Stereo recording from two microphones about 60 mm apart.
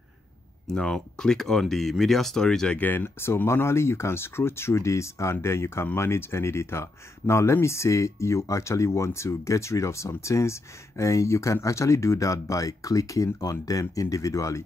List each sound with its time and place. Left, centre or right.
0.7 s speech: centre
2.8 s speech: left